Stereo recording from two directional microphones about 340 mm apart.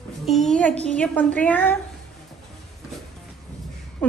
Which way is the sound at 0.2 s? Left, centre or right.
Centre.